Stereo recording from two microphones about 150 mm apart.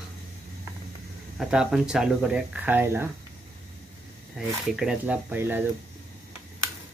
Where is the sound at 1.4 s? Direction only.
5° right (ahead or behind).